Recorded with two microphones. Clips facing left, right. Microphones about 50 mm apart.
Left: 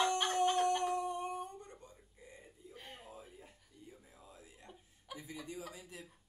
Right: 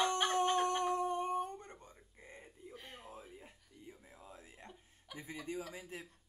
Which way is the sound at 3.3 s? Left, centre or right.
Right.